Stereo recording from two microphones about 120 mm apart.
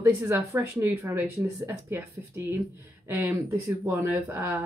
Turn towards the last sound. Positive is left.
turn(degrees=-15)  # may be behind; listen again after turning